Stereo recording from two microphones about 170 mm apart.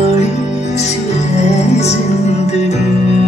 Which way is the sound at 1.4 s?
40° left (ahead or behind).